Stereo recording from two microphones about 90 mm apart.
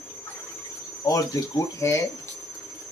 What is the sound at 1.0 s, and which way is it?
Speech, 40° left (ahead or behind).